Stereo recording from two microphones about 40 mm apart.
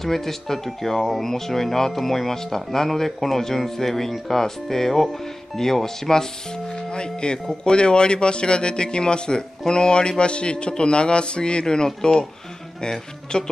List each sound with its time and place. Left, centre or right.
0.0 s speech: centre
6.7 s speech: left
13.3 s speech: left